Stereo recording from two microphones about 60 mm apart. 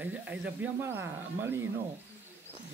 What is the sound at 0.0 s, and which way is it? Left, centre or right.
Speech, right.